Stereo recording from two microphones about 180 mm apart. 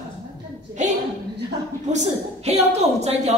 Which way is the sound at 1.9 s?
40° right (ahead or behind).